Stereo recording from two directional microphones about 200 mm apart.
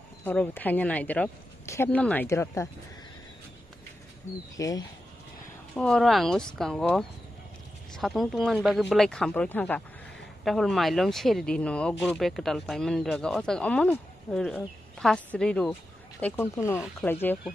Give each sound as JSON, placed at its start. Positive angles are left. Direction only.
{"t": 0.2, "sound": "speech", "side_deg": 10}
{"t": 4.6, "sound": "speech", "side_deg": 15}
{"t": 5.8, "sound": "speech", "side_deg": 5}